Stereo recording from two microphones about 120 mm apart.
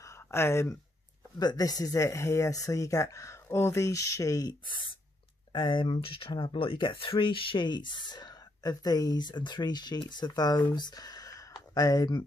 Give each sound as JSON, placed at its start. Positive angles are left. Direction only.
{"t": 0.0, "sound": "a sound", "side_deg": 25}
{"t": 1.4, "sound": "speech", "side_deg": 35}
{"t": 5.5, "sound": "speech", "side_deg": 40}